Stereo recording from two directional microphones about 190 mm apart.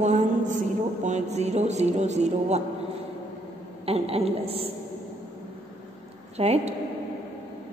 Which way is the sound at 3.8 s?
30° right (ahead or behind).